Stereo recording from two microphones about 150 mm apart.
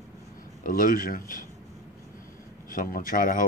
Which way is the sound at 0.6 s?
70° left (ahead or behind).